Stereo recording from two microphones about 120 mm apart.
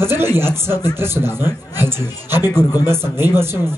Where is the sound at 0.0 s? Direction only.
20° right (ahead or behind).